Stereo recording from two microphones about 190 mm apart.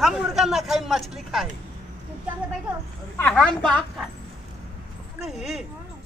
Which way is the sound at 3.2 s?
5° left (ahead or behind).